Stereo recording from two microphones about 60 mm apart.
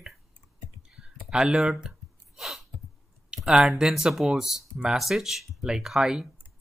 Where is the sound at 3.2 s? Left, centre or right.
Centre.